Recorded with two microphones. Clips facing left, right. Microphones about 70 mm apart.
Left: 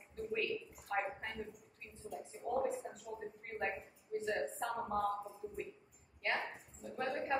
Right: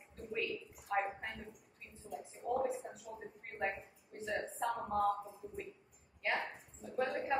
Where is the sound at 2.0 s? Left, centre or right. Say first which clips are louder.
Even; centre.